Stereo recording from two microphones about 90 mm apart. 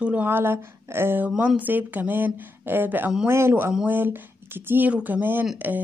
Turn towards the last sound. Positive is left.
turn(degrees=-20)  # may be behind; listen again after turning